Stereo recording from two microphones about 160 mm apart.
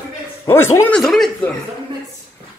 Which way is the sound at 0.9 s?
Centre (ahead or behind).